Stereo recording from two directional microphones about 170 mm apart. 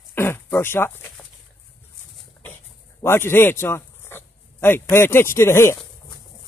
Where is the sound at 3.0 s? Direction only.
15° left (ahead or behind).